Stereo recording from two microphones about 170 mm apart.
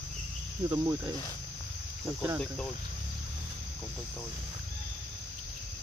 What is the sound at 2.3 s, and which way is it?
Speech, 5° left (ahead or behind).